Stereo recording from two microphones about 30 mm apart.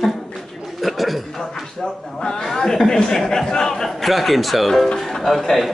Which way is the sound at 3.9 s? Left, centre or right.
Centre.